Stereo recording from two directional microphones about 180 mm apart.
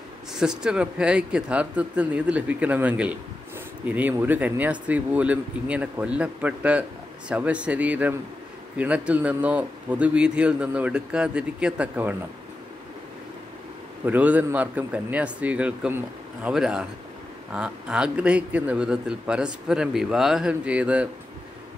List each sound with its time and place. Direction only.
0.3 s speech: 5° right (ahead or behind)
14.0 s a man's voice: 10° right (ahead or behind)